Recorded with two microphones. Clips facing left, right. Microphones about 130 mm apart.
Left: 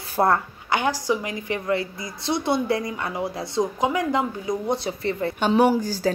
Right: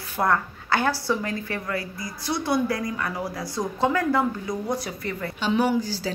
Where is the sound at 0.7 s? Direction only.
15° left (ahead or behind).